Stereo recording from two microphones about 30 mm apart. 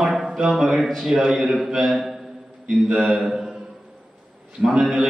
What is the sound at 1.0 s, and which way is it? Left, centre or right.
Speech, right.